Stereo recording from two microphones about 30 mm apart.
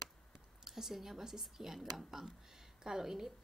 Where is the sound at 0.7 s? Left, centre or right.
Centre.